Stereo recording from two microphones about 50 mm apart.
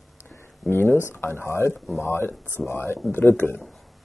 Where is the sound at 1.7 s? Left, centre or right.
Centre.